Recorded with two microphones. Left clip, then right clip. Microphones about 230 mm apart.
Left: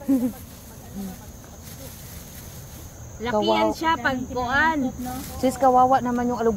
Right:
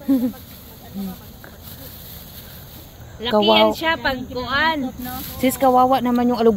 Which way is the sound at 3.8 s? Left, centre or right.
Centre.